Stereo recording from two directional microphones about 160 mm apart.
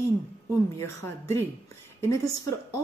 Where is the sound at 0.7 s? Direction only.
15° left (ahead or behind).